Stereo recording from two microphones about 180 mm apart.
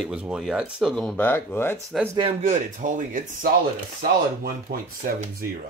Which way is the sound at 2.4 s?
45° right (ahead or behind).